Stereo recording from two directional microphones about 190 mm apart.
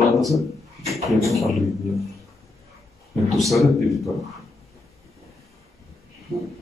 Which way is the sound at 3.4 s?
Centre (ahead or behind).